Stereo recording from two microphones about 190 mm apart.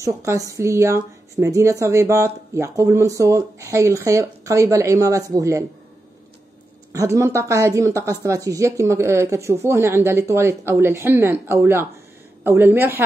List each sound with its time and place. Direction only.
0.0 s a woman's voice: 15° right (ahead or behind)
6.9 s a woman's voice: 15° right (ahead or behind)